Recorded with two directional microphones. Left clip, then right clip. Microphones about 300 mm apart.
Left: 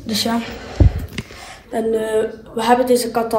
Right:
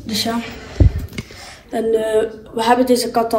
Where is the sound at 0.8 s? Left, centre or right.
Centre.